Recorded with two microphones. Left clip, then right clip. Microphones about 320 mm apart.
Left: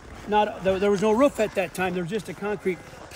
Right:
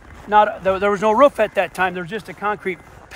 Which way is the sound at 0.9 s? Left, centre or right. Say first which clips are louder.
Right 8 dB; right.